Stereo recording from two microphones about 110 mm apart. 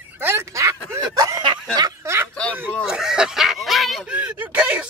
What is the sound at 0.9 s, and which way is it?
Snicker, 35° right (ahead or behind).